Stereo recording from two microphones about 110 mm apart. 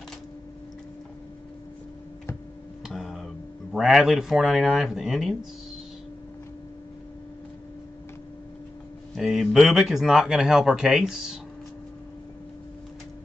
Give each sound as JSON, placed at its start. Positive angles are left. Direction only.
{"t": 2.9, "sound": "a sound", "side_deg": 0}
{"t": 3.7, "sound": "speech", "side_deg": 0}
{"t": 9.1, "sound": "speech", "side_deg": 0}